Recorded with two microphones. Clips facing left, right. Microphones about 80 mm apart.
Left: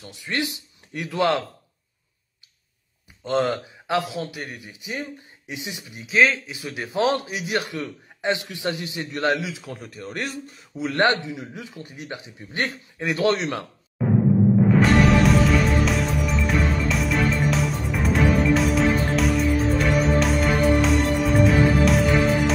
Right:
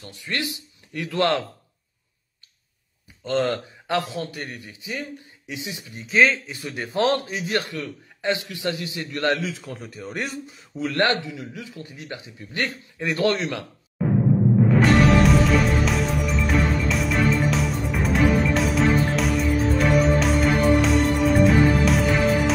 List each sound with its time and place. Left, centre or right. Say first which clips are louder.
0.0 s a man's voice: left 2 dB; centre
3.3 s a man's voice: left 1 dB; centre
5.9 s a man's voice: even; centre; by 9.3 s left
9.3 s a man's voice: even; centre
10.7 s a man's voice: left 1 dB; left
14.0 s timpani: left 1 dB; centre
14.6 s music: right 2 dB; centre